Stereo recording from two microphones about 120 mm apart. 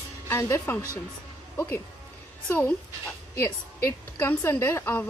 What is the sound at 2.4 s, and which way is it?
A woman's voice, 15° left (ahead or behind).